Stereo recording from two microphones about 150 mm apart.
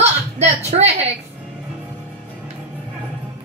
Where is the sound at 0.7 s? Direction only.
45° right (ahead or behind).